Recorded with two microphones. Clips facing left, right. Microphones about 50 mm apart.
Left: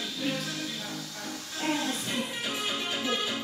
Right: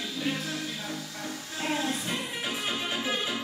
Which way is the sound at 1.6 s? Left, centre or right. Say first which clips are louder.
Even; centre.